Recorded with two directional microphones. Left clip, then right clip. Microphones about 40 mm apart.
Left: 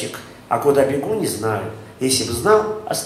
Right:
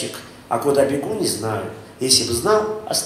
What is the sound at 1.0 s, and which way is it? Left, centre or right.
A man's voice, right.